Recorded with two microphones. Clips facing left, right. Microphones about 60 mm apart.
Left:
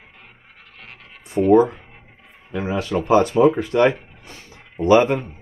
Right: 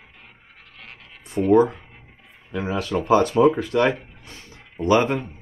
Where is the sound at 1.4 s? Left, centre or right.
Left.